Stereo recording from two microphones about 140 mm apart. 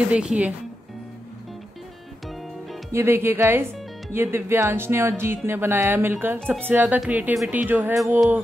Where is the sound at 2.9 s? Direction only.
20° right (ahead or behind).